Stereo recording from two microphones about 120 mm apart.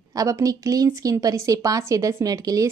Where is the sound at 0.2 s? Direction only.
30° right (ahead or behind).